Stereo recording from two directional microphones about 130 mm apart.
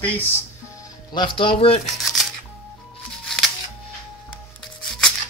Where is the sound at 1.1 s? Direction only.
40° left (ahead or behind).